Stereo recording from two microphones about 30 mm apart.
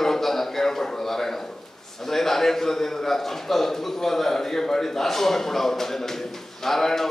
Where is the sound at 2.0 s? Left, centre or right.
Centre.